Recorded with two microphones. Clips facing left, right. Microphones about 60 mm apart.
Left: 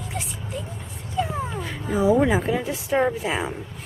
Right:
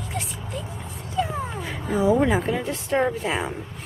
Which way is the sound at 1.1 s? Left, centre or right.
Centre.